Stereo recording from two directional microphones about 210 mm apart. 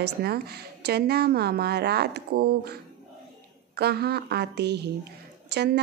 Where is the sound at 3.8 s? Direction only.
50° right (ahead or behind).